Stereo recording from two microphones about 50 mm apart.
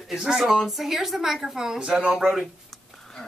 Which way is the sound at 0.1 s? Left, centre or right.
Centre.